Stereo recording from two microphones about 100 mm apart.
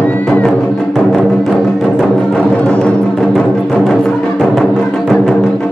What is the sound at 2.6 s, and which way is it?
Music, 10° left (ahead or behind).